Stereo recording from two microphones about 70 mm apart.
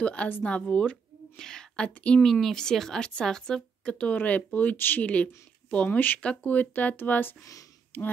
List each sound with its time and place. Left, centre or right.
0.0 s a woman's voice: centre
1.3 s a sound: centre
2.0 s a woman's voice: centre